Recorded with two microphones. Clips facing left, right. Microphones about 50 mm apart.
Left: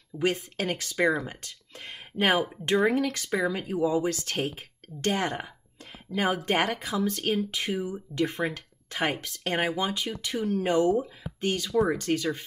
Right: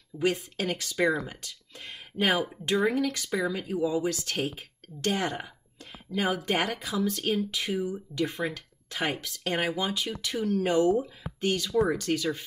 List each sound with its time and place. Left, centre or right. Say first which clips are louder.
0.2 s speech: even; left